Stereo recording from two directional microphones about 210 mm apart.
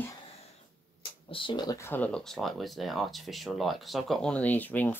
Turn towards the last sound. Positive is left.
turn(degrees=10)  # may be behind; listen again after turning